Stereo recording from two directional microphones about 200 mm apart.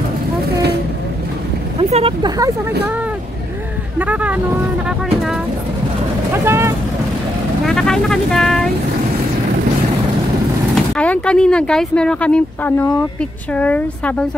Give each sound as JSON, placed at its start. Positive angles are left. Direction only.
{"t": 0.5, "sound": "vehicle", "side_deg": -55}
{"t": 1.8, "sound": "speech", "side_deg": -30}
{"t": 4.0, "sound": "speech", "side_deg": -10}
{"t": 6.3, "sound": "speech", "side_deg": -10}
{"t": 7.6, "sound": "speech", "side_deg": 5}
{"t": 10.7, "sound": "speech", "side_deg": 5}